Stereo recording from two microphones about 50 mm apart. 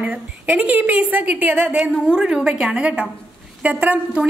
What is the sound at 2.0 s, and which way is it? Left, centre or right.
A woman's voice, centre.